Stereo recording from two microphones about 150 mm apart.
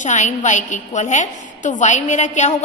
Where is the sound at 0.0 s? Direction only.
55° left (ahead or behind).